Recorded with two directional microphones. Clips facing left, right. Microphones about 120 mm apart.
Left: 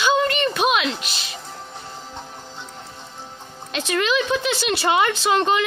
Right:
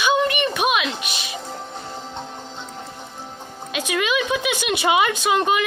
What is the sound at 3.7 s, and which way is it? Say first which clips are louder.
A woman's voice: left 1 dB; 10° right (ahead or behind).